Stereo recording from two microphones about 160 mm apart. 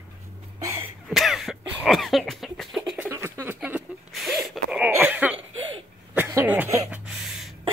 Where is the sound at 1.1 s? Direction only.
Centre (ahead or behind).